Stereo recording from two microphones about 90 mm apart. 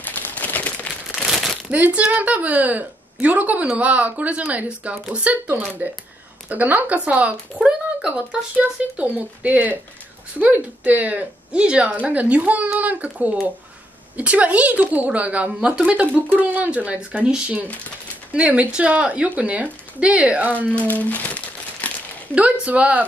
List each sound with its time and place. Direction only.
0.0 s a sound: 20° left (ahead or behind)
1.1 s crumpling: centre (ahead or behind)
1.7 s speech: 15° right (ahead or behind)
20.7 s speech: 15° left (ahead or behind)
21.8 s crumpling: 15° left (ahead or behind)
22.3 s speech: 15° right (ahead or behind)